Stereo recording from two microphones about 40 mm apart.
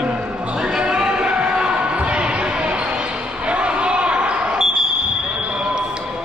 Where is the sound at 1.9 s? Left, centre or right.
Right.